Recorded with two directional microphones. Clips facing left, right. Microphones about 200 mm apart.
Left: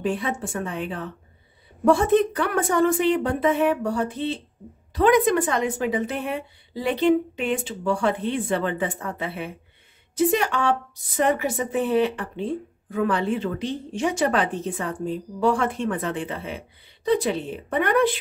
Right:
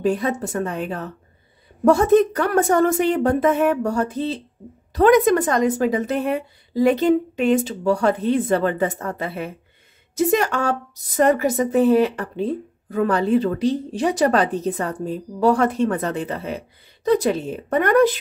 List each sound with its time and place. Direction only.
0.0 s a woman's voice: 40° right (ahead or behind)